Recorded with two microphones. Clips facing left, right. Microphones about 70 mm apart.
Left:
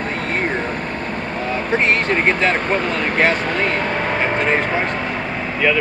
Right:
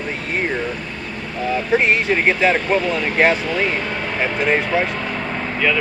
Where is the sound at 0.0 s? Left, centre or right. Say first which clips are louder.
Left 2 dB; left.